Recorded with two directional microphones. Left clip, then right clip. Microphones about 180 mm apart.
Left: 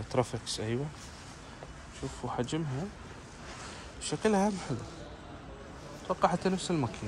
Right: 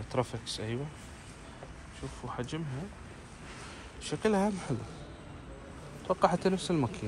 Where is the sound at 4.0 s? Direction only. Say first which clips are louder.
Left 1 dB; 20° left (ahead or behind).